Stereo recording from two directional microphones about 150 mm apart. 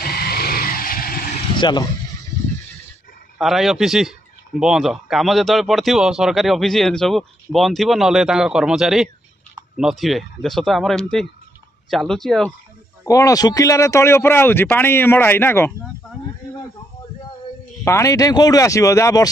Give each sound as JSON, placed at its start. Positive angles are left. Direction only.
{"t": 0.0, "sound": "vehicle", "side_deg": 90}
{"t": 1.6, "sound": "speech", "side_deg": 30}
{"t": 3.3, "sound": "speech", "side_deg": 0}
{"t": 13.0, "sound": "speech", "side_deg": 20}
{"t": 17.8, "sound": "speech", "side_deg": 20}